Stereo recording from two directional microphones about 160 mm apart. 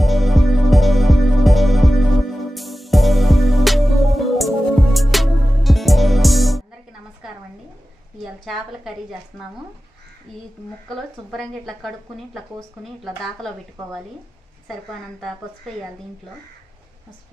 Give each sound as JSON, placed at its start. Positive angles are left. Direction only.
{"t": 0.0, "sound": "music", "side_deg": 0}
{"t": 8.5, "sound": "speech", "side_deg": 0}
{"t": 10.9, "sound": "speech", "side_deg": 0}